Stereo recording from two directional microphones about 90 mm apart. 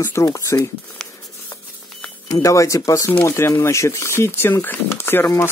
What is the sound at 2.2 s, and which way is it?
Speech, 40° left (ahead or behind).